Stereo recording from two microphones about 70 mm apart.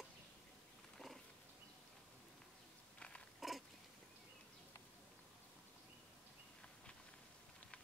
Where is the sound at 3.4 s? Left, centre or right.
Centre.